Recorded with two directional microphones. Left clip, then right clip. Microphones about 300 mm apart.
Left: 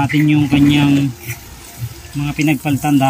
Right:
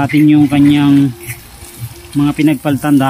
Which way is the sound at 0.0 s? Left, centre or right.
Centre.